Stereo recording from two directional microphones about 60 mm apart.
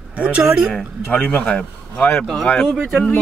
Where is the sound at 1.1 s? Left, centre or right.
Left.